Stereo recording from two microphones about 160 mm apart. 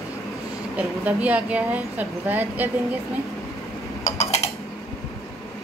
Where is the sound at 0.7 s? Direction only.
10° right (ahead or behind).